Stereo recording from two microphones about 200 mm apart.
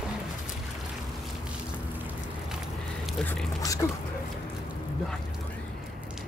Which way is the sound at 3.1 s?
5° left (ahead or behind).